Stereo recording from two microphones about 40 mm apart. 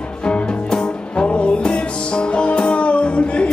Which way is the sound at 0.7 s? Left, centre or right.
Left.